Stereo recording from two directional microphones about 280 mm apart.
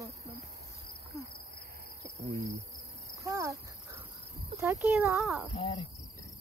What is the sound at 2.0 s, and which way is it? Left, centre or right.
Cricket, centre.